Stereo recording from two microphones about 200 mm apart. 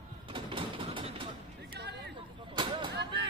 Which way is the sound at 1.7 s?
55° right (ahead or behind).